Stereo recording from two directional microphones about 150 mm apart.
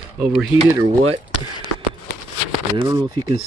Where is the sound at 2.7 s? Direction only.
30° right (ahead or behind).